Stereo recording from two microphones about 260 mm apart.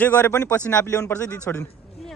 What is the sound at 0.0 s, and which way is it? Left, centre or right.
A man's voice, centre.